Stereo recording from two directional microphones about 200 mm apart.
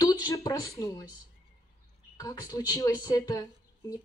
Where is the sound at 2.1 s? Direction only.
20° left (ahead or behind).